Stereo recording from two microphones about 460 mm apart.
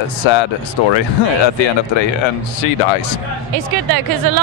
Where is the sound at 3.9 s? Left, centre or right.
Right.